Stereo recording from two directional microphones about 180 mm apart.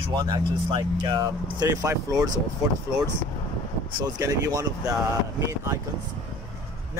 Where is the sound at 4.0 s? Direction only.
20° right (ahead or behind).